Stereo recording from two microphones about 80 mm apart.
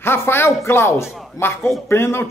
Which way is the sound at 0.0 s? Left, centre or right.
Left.